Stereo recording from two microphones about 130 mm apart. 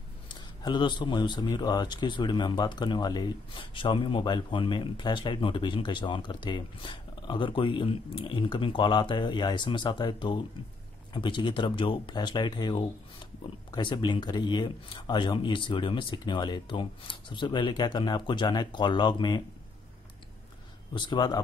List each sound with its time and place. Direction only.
0.3 s speech: 35° left (ahead or behind)
20.9 s speech: 35° left (ahead or behind)